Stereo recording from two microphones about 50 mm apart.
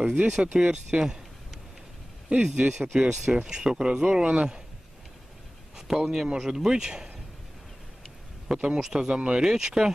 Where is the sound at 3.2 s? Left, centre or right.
Centre.